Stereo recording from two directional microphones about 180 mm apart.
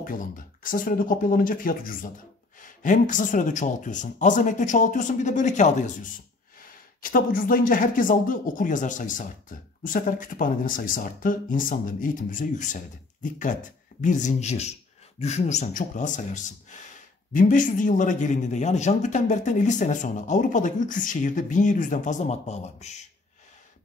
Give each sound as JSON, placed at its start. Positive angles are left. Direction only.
{"t": 0.7, "sound": "speech", "side_deg": 50}
{"t": 7.0, "sound": "speech", "side_deg": 50}